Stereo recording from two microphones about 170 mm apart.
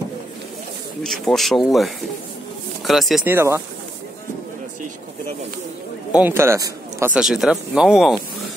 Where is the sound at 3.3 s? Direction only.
15° right (ahead or behind).